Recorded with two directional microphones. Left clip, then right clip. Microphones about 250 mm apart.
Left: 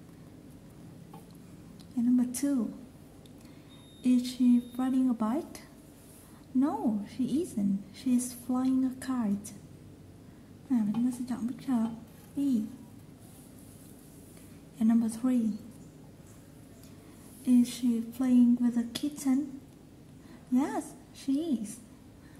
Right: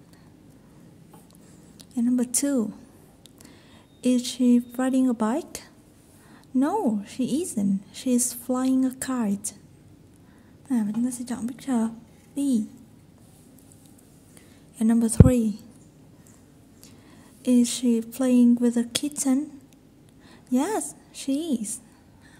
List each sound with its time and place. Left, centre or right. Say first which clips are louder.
2.0 s a woman's voice: right 4 dB; right
4.0 s a woman's voice: right 4 dB; right
10.7 s a woman's voice: right 3 dB; right
14.8 s speech: right 8 dB; right
17.4 s a woman's voice: right 5 dB; right
20.5 s a woman's voice: right 5 dB; right